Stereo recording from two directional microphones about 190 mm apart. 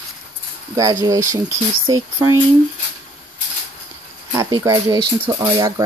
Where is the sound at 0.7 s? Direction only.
20° right (ahead or behind).